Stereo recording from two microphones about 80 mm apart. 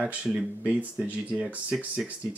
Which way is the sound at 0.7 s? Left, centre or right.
Centre.